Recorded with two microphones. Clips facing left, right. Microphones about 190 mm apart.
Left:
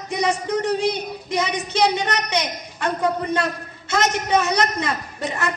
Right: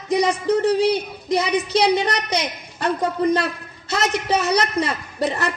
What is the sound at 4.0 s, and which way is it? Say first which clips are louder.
Speech: left 1 dB; 40° left (ahead or behind).